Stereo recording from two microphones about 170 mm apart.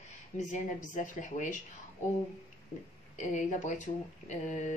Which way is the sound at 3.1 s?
45° left (ahead or behind).